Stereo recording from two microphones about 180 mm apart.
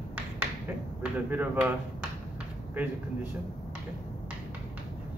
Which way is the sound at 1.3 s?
10° right (ahead or behind).